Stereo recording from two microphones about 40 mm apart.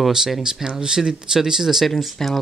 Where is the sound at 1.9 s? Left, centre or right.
Centre.